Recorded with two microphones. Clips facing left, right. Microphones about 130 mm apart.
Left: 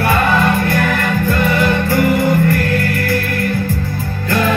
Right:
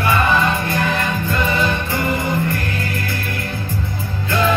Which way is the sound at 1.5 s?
65° left (ahead or behind).